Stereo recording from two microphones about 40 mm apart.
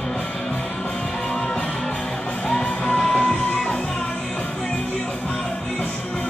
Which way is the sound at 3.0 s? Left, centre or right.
Centre.